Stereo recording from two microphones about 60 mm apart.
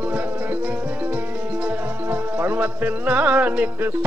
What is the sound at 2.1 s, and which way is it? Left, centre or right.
Music, right.